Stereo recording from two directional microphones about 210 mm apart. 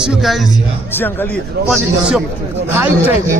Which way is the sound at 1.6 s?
Centre (ahead or behind).